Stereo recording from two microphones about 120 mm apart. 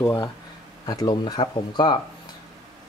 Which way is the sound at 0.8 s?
35° left (ahead or behind).